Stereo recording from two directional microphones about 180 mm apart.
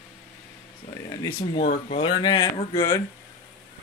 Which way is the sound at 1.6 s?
35° left (ahead or behind).